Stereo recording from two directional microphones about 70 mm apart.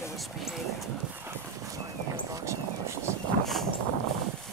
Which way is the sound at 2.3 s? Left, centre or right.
Right.